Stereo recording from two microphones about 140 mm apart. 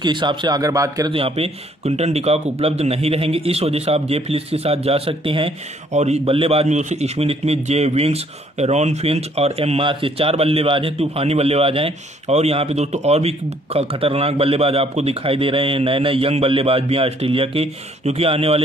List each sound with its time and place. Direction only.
0.0 s speech: 35° right (ahead or behind)
1.1 s a man's voice: 45° right (ahead or behind)
5.9 s a man's voice: 50° right (ahead or behind)